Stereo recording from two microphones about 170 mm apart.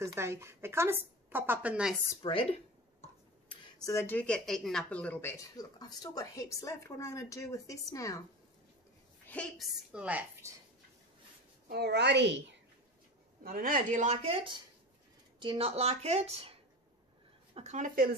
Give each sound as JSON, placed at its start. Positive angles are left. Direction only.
{"t": 0.0, "sound": "a woman's voice", "side_deg": -15}
{"t": 2.2, "sound": "speech", "side_deg": 25}
{"t": 3.8, "sound": "speech", "side_deg": 15}
{"t": 5.4, "sound": "speech", "side_deg": 20}
{"t": 9.2, "sound": "a woman's voice", "side_deg": 10}
{"t": 9.9, "sound": "a woman's voice", "side_deg": -10}
{"t": 11.7, "sound": "a woman's voice", "side_deg": -80}
{"t": 13.4, "sound": "speech", "side_deg": -55}
{"t": 17.6, "sound": "speech", "side_deg": -45}